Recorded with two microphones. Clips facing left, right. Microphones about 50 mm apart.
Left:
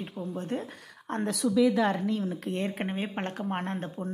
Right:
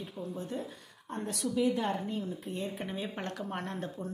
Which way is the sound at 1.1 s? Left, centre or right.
Left.